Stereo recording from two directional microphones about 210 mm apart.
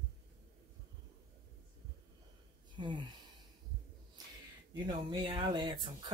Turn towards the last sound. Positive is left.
turn(degrees=-20)  # may be behind; listen again after turning